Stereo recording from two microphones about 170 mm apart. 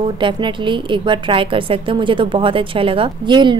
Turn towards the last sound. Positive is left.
turn(degrees=-25)  # may be behind; listen again after turning